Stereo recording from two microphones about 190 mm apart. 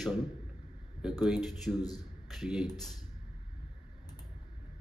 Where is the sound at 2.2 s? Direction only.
Centre (ahead or behind).